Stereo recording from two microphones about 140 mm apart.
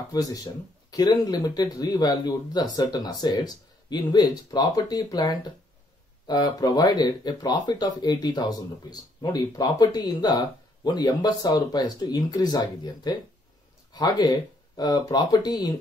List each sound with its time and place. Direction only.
0.1 s speech: 25° left (ahead or behind)